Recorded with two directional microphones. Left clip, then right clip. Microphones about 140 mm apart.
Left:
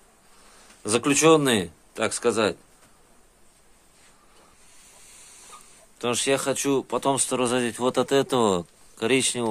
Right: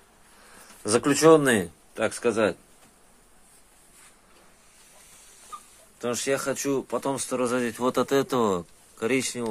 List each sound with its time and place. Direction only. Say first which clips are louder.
0.8 s speech: right 1 dB; 10° left (ahead or behind)
5.9 s speech: left 3 dB; 30° left (ahead or behind)